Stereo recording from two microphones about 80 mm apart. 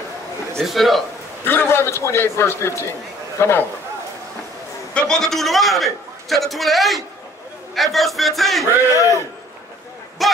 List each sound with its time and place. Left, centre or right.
0.6 s a man's voice: centre
1.4 s a man's voice: left
4.9 s a man's voice: centre
8.9 s a man's voice: left
10.2 s speech: centre